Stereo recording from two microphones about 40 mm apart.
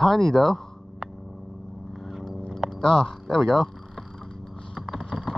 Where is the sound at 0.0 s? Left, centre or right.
Centre.